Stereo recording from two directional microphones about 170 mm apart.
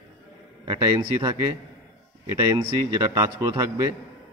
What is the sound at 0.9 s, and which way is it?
Speech, 20° right (ahead or behind).